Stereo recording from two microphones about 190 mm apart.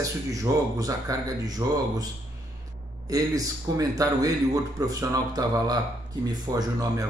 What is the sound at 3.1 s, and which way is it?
A man's voice, 20° right (ahead or behind).